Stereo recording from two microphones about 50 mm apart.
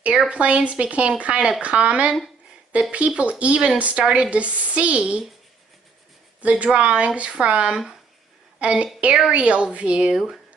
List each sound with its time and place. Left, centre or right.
0.3 s speech: right
6.4 s speech: right
7.7 s speech: centre
8.5 s speech: right
10.1 s speech: centre